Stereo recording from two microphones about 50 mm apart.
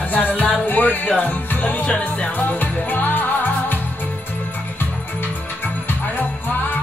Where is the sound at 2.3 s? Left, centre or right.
Left.